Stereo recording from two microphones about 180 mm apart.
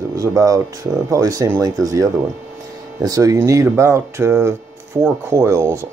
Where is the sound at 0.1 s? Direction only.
20° right (ahead or behind).